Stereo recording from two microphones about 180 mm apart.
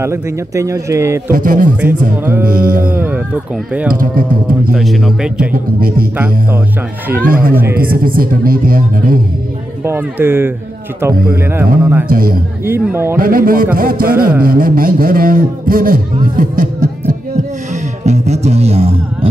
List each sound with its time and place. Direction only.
0.0 s a man's voice: 15° right (ahead or behind)
1.3 s speech: 50° right (ahead or behind)
1.8 s a man's voice: 10° right (ahead or behind)
2.9 s a sound: 10° right (ahead or behind)
3.9 s speech: 55° right (ahead or behind)
4.7 s speech: centre (ahead or behind)
5.5 s speech: 55° right (ahead or behind)
6.1 s a man's voice: 10° right (ahead or behind)
7.2 s speech: 55° right (ahead or behind)
9.8 s a man's voice: 10° right (ahead or behind)
12.1 s speech: 55° right (ahead or behind)
12.6 s a man's voice: 10° right (ahead or behind)
13.2 s speech: 55° right (ahead or behind)
18.0 s music: 40° right (ahead or behind)